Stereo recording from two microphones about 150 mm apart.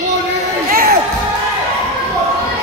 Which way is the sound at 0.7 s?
75° right (ahead or behind).